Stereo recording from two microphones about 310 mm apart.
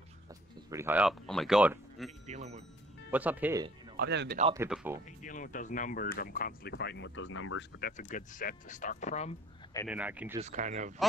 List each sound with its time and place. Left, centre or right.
0.7 s speech: centre
2.2 s a sound: right
3.1 s speech: centre
3.9 s speech: right
4.6 s speech: centre
5.2 s speech: left
7.9 s speech: left
9.8 s speech: centre
10.4 s speech: right